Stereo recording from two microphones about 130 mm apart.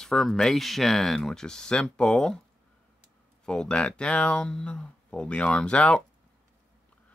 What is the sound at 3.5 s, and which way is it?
Speech, 5° left (ahead or behind).